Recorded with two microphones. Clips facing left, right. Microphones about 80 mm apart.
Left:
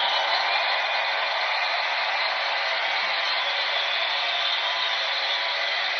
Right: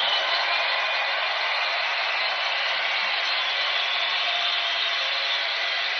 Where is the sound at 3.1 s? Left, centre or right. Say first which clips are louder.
Left 1 dB; left.